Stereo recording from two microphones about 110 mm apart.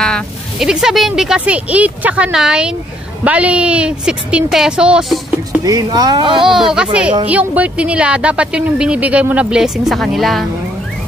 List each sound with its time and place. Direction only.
0.6 s speech: 5° right (ahead or behind)
5.6 s speech: 35° right (ahead or behind)
6.4 s speech: 5° right (ahead or behind)